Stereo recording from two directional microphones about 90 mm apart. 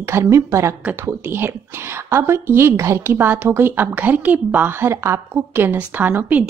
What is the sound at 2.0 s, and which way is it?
A woman's voice, 30° right (ahead or behind).